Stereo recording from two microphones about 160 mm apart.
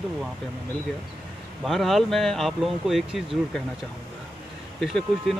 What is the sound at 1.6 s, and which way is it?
Speech, centre (ahead or behind).